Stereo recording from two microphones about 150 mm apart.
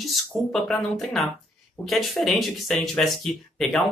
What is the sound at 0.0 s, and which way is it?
Speech, 5° left (ahead or behind).